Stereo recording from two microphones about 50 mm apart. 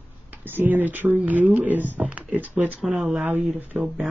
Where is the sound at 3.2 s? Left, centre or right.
Right.